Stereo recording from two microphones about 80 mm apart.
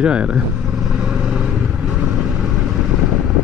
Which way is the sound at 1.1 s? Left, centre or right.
Centre.